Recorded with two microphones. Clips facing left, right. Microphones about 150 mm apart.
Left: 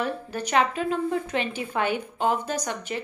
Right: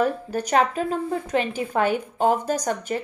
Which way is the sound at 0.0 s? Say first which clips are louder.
Right 6 dB; 40° right (ahead or behind).